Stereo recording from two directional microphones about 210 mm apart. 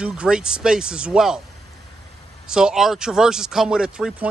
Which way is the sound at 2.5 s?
5° right (ahead or behind).